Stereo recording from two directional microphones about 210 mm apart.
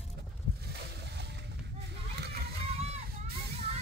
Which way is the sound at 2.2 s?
50° right (ahead or behind).